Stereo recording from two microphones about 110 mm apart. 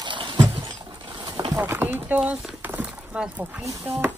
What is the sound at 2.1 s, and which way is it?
Speech, 5° right (ahead or behind).